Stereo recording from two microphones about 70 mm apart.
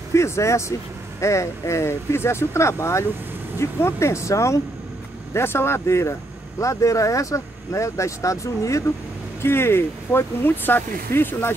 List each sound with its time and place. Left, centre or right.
0.1 s speech: left
5.3 s speech: left
9.4 s speech: left